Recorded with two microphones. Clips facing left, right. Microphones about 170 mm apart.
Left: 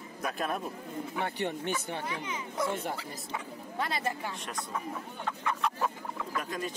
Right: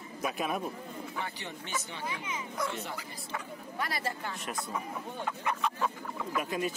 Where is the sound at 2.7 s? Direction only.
50° left (ahead or behind).